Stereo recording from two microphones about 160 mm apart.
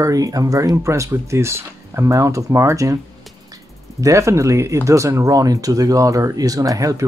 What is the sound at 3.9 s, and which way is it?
Speech, 20° right (ahead or behind).